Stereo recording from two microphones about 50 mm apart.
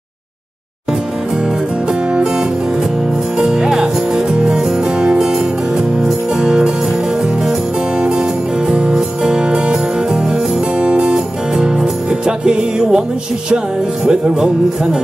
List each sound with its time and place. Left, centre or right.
3.3 s music: centre
6.4 s music: centre
8.0 s music: centre
10.8 s music: right
14.0 s music: centre